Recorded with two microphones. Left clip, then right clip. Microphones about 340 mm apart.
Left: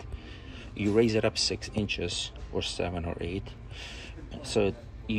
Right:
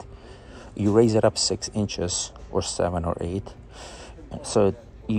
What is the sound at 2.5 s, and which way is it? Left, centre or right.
Speech, right.